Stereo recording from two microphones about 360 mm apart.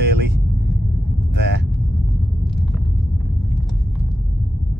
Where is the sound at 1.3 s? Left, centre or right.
Right.